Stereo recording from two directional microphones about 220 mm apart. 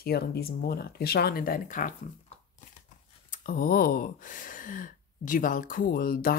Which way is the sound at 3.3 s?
40° left (ahead or behind).